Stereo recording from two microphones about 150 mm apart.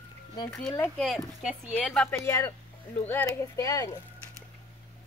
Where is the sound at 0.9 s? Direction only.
Centre (ahead or behind).